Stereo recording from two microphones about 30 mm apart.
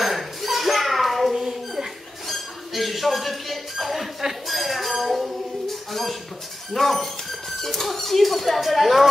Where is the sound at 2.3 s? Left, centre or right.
Centre.